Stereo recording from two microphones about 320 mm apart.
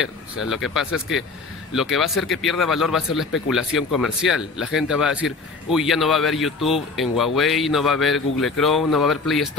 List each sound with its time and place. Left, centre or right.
0.0 s a man's voice: centre